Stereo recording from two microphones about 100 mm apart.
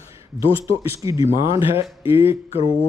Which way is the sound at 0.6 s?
35° right (ahead or behind).